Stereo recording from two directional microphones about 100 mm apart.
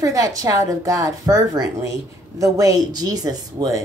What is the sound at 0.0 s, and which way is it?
A woman's voice, 35° right (ahead or behind).